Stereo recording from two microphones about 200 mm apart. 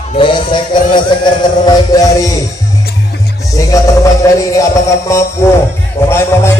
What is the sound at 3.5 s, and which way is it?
Music, 15° left (ahead or behind).